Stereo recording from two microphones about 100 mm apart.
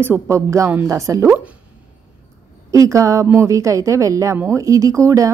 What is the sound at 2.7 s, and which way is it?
Speech, 35° right (ahead or behind).